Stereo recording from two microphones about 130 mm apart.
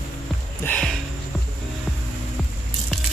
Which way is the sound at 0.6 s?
20° left (ahead or behind).